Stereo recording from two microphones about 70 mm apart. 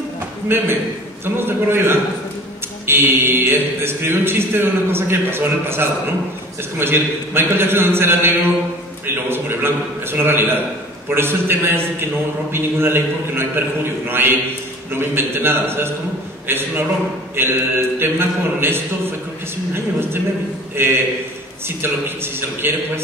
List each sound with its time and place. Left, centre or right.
0.5 s speech: right